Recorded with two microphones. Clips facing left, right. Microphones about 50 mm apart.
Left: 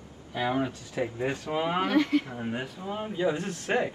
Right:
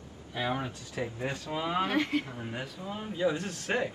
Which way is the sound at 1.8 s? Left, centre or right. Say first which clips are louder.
Left 6 dB; right.